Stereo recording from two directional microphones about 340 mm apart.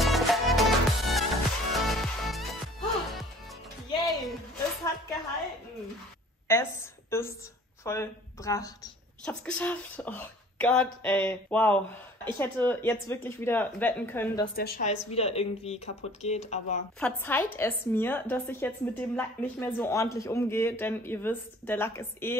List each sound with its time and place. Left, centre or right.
0.0 s music: centre
3.9 s music: centre
6.4 s a sound: centre
9.2 s speech: centre
14.5 s speech: left
17.0 s speech: centre